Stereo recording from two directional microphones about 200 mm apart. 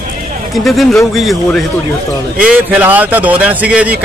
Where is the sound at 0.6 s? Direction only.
Centre (ahead or behind).